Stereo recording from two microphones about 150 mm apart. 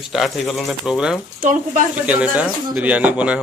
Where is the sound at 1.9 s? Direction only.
10° right (ahead or behind).